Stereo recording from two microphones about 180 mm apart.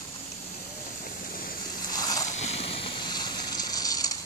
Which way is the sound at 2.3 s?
35° left (ahead or behind).